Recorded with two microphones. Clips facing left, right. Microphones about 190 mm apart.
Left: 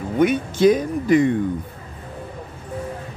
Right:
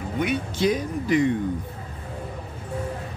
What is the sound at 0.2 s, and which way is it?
Speech, 50° left (ahead or behind).